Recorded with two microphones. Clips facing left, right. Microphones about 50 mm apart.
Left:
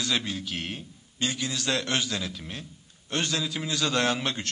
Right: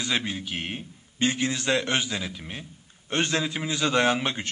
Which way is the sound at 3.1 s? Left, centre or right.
Right.